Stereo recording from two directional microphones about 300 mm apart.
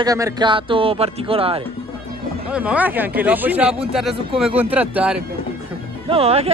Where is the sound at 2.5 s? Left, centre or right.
Centre.